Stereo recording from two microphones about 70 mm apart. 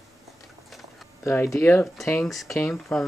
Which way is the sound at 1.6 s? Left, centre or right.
Left.